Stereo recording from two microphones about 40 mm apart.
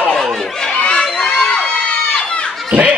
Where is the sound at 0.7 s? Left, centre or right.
Left.